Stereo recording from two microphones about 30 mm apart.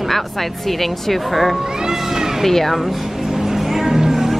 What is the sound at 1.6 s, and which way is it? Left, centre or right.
Speech, centre.